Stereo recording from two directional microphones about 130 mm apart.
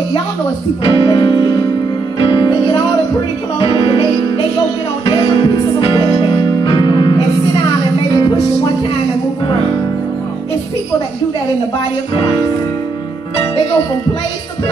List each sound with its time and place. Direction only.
0.8 s speech: 45° left (ahead or behind)
3.5 s music: 40° left (ahead or behind)
5.0 s music: 40° left (ahead or behind)